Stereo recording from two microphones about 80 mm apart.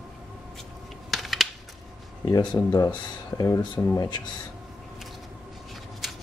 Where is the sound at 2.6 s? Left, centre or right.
Left.